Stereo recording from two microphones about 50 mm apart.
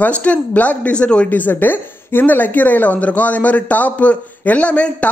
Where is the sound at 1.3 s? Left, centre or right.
Left.